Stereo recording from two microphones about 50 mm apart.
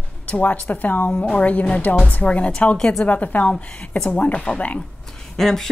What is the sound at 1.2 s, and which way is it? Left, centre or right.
Speech, left.